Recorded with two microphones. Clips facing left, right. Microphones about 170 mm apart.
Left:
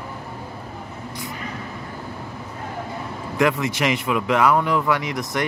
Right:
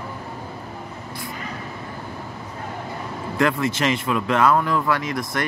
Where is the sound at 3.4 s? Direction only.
15° left (ahead or behind).